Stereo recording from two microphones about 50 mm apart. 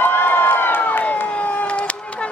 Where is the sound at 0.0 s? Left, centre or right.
Left.